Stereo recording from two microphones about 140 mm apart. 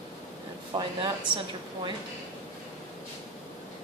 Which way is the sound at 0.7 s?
35° right (ahead or behind).